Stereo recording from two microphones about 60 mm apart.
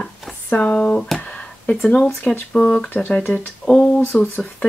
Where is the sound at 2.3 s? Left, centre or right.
Centre.